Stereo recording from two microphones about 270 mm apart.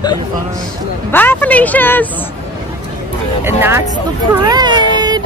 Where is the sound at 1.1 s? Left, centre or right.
Centre.